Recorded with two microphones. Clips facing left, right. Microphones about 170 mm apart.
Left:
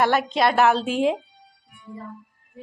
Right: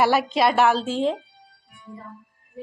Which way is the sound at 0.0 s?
5° right (ahead or behind).